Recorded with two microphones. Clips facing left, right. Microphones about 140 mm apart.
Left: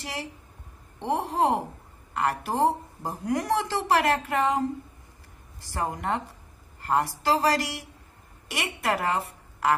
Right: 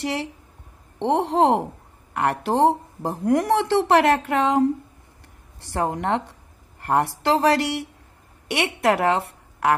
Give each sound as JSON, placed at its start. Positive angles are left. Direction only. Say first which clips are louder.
{"t": 0.0, "sound": "a woman's voice", "louder": "right 9 dB", "side_deg": -65}